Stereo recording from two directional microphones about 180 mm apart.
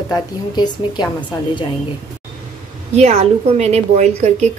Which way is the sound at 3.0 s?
40° right (ahead or behind).